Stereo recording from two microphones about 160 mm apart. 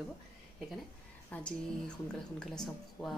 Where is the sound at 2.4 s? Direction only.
Centre (ahead or behind).